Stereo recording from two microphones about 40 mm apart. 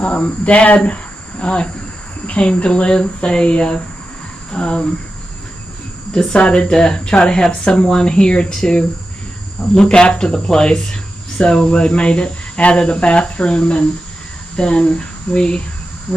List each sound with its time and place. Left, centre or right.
0.0 s speech: left
1.4 s speech: left
6.1 s speech: left